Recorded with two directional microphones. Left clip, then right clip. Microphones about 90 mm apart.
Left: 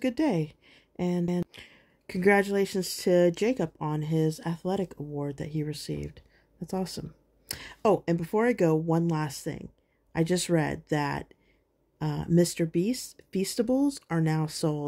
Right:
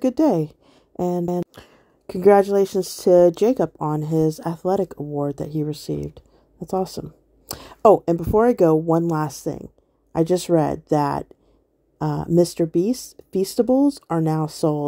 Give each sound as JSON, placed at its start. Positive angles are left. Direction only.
{"t": 0.0, "sound": "a woman's voice", "side_deg": -40}
{"t": 1.5, "sound": "a sound", "side_deg": -50}
{"t": 2.1, "sound": "speech", "side_deg": -40}